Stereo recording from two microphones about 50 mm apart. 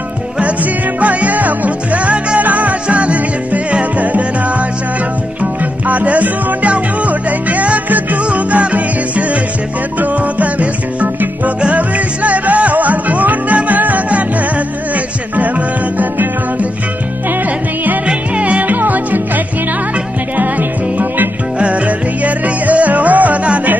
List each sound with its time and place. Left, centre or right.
1.0 s music: right
15.3 s music: right
18.0 s music: right
21.5 s music: right